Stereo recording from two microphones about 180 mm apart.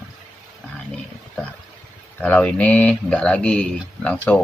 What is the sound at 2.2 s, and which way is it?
Speech, 5° left (ahead or behind).